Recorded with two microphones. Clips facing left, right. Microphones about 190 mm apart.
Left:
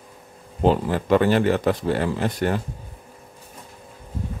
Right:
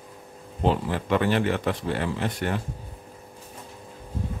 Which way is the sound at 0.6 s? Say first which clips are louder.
Left 5 dB; 40° left (ahead or behind).